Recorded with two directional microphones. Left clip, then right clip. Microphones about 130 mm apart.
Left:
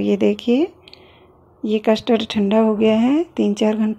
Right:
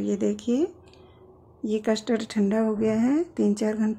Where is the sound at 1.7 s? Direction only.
20° left (ahead or behind).